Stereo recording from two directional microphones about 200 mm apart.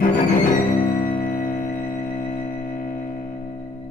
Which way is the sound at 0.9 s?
45° left (ahead or behind).